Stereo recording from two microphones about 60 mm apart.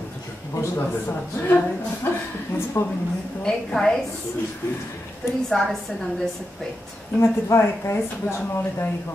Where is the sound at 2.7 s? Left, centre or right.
Left.